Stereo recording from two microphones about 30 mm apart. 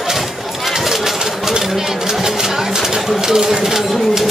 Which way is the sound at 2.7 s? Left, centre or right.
Centre.